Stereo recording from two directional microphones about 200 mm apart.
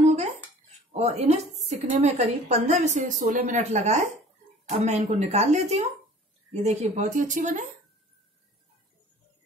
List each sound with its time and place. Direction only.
0.0 s dishes: 35° right (ahead or behind)
0.9 s a woman's voice: 35° right (ahead or behind)